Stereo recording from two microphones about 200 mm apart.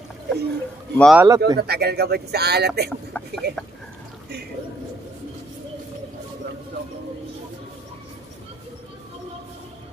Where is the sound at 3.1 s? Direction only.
10° left (ahead or behind).